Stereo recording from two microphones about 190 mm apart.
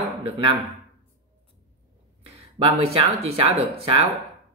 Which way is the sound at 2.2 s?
30° right (ahead or behind).